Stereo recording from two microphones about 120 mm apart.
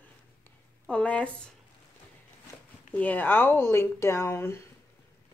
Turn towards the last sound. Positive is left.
turn(degrees=25)  # may be behind; listen again after turning